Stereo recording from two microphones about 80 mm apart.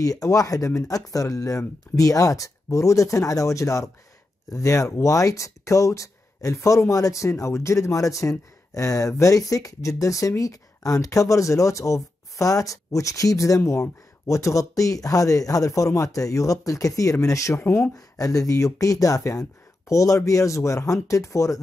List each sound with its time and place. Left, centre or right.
0.0 s speech: left
17.6 s speech: left
17.9 s speech: left